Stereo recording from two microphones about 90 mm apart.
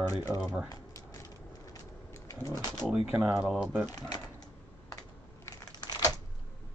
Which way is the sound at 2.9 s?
10° right (ahead or behind).